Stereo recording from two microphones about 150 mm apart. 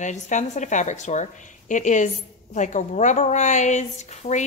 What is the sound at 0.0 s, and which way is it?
A woman's voice, 55° left (ahead or behind).